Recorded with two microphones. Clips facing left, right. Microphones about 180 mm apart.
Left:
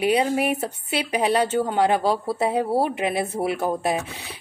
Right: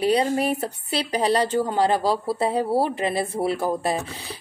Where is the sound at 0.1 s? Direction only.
10° left (ahead or behind).